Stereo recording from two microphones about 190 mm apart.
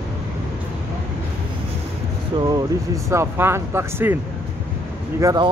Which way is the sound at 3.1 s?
15° right (ahead or behind).